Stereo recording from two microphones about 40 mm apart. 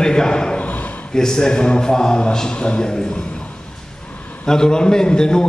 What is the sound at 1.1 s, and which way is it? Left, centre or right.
A man's voice, centre.